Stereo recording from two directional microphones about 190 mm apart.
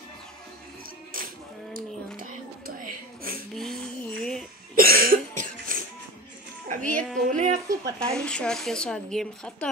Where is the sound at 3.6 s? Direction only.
5° left (ahead or behind).